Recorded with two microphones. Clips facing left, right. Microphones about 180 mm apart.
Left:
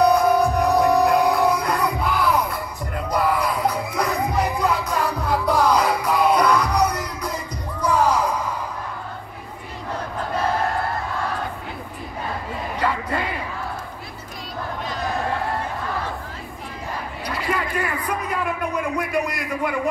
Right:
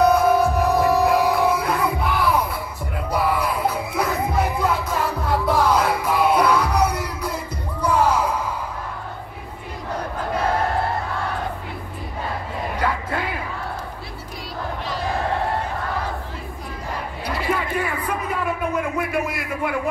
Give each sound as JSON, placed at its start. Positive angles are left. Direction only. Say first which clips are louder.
{"t": 0.0, "sound": "music", "louder": "even", "side_deg": -5}
{"t": 17.5, "sound": "music", "louder": "right 1 dB", "side_deg": -5}